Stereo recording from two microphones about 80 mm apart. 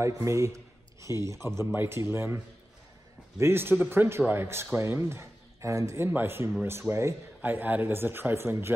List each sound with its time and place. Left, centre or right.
0.0 s a man's voice: right
6.0 s a man's voice: right
7.4 s a man's voice: right